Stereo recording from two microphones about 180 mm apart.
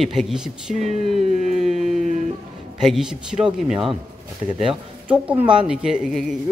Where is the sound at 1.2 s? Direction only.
40° right (ahead or behind).